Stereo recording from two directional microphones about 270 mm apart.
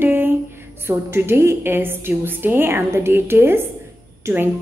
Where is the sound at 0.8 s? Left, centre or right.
Centre.